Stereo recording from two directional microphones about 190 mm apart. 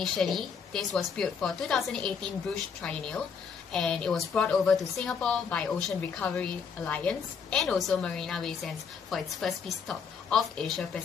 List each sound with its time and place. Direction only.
0.0 s a woman's voice: centre (ahead or behind)